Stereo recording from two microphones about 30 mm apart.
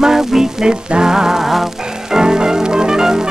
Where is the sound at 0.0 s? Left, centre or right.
Centre.